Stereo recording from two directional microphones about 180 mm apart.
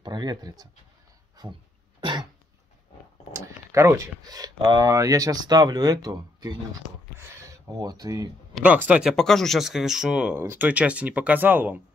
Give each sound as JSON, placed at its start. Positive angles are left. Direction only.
{"t": 0.0, "sound": "speech", "side_deg": -25}
{"t": 2.0, "sound": "throat clearing", "side_deg": -25}
{"t": 3.3, "sound": "speech", "side_deg": -15}
{"t": 8.5, "sound": "speech", "side_deg": -10}
{"t": 9.1, "sound": "speech", "side_deg": 0}